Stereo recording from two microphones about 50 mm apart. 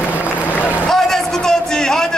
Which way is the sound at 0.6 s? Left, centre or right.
Left.